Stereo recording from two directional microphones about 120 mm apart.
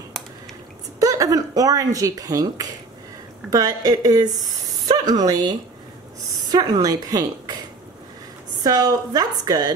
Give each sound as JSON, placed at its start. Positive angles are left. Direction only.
{"t": 0.9, "sound": "speech", "side_deg": -30}
{"t": 8.6, "sound": "speech", "side_deg": -30}